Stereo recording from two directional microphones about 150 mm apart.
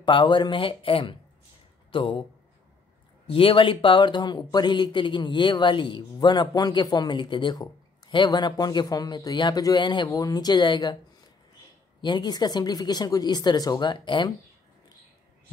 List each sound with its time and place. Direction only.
0.0 s speech: 30° left (ahead or behind)
3.3 s speech: 35° left (ahead or behind)
12.0 s speech: 30° left (ahead or behind)